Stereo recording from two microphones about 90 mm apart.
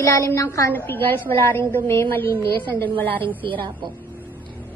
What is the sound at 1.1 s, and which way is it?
A woman's voice, 25° left (ahead or behind).